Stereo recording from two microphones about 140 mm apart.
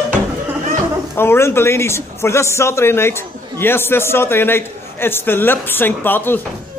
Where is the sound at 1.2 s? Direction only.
15° left (ahead or behind).